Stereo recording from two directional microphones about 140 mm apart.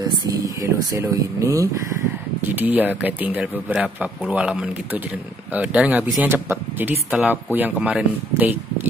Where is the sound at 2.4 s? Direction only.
15° right (ahead or behind).